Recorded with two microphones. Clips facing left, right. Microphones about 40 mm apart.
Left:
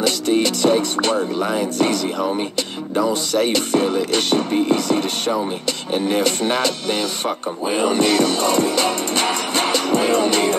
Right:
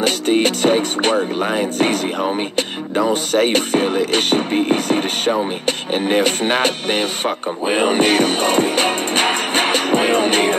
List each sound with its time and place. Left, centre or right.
0.0 s music: right